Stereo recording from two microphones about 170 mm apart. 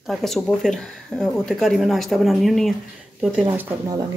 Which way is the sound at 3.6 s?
15° right (ahead or behind).